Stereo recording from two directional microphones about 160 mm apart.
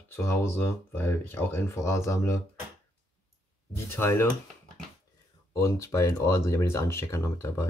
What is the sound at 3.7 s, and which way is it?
Speech, 15° left (ahead or behind).